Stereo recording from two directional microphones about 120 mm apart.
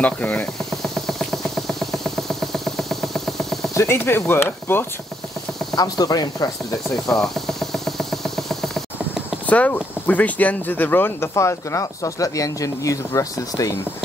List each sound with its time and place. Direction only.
0.0 s speech: 10° left (ahead or behind)
0.8 s vehicle: centre (ahead or behind)
3.7 s speech: 20° left (ahead or behind)
5.8 s speech: 30° left (ahead or behind)
7.1 s a sound: 5° left (ahead or behind)
9.5 s speech: 15° left (ahead or behind); by 13.7 s 30° left (ahead or behind)